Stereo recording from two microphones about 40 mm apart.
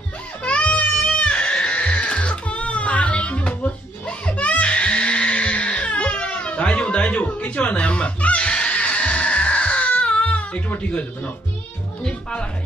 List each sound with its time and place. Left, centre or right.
0.4 s music: left
12.0 s speech: left